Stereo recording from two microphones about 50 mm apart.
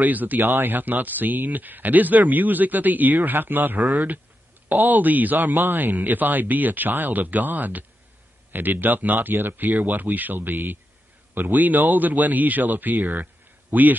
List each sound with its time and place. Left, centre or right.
0.0 s speech: right
0.4 s speech: right